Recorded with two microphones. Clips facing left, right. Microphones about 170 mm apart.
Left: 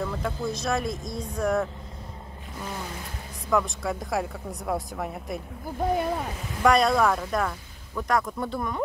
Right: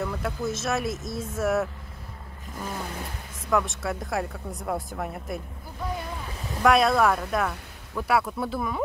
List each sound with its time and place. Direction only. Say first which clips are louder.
0.0 s speech: even; 5° right (ahead or behind)
3.4 s speech: even; centre (ahead or behind)
5.8 s speech: left 8 dB; 55° left (ahead or behind)
6.6 s speech: even; centre (ahead or behind)